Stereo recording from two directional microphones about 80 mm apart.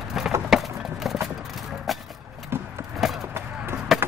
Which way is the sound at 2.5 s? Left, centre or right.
Right.